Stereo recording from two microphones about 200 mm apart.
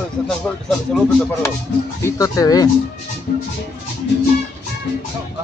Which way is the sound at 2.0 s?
15° left (ahead or behind).